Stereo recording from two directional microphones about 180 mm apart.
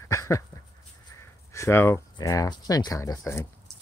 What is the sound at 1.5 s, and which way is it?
Speech, 15° left (ahead or behind).